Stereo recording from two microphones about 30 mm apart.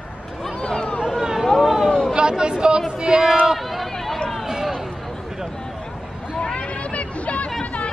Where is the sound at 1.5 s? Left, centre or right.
Centre.